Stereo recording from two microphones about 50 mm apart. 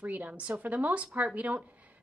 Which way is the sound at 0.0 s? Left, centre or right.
Right.